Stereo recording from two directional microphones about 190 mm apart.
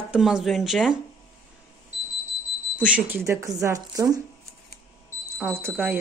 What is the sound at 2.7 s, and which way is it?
Speech, 5° right (ahead or behind).